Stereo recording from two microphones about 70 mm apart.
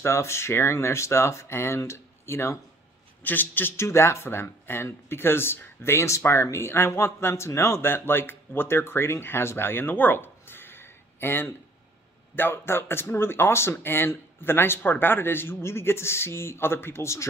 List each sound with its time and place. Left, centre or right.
0.0 s speech: left
3.3 s speech: left